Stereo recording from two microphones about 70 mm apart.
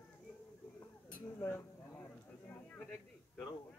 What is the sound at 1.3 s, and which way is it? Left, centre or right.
Speech, left.